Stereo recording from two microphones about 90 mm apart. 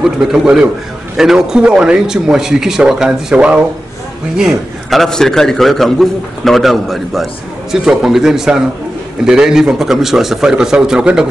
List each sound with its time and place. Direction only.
0.0 s speech: 5° right (ahead or behind)
4.4 s a man's voice: centre (ahead or behind)